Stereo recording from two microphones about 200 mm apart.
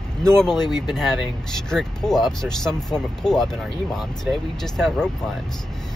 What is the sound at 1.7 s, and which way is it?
Speech, 5° left (ahead or behind).